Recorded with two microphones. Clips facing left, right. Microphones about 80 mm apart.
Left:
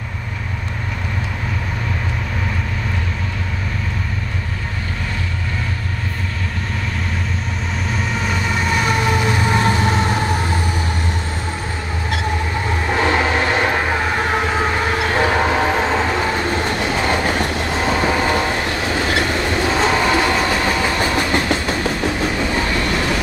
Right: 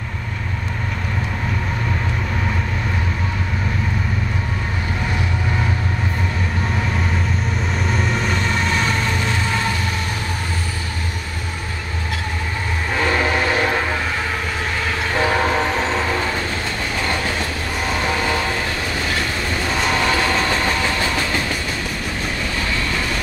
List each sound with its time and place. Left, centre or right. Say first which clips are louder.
7.9 s vehicle: even; centre; by 10.4 s left
12.9 s train: left 2 dB; centre